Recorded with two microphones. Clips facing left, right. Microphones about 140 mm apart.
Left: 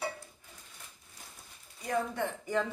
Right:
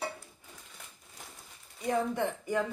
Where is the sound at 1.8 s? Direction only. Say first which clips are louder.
Right 3 dB; 15° right (ahead or behind).